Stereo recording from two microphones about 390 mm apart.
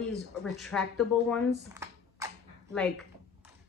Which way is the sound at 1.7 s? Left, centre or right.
Centre.